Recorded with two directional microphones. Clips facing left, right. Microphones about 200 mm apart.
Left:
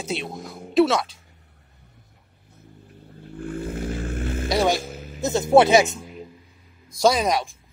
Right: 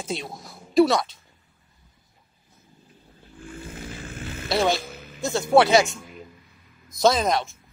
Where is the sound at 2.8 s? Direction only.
60° left (ahead or behind).